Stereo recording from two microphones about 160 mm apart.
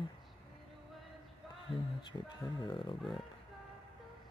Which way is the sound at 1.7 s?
Centre (ahead or behind).